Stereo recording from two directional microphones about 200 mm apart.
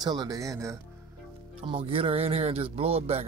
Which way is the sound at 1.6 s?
25° right (ahead or behind).